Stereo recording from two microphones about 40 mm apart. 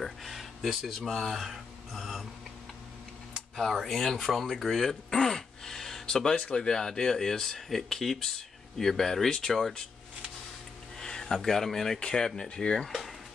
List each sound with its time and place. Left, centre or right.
0.0 s speech: centre
1.5 s speech: centre
3.8 s speech: centre
11.0 s speech: centre